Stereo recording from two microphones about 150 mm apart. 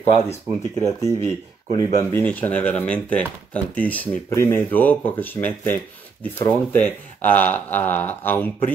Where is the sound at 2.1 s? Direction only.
10° left (ahead or behind).